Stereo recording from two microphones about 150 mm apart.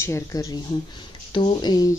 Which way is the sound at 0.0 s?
20° left (ahead or behind).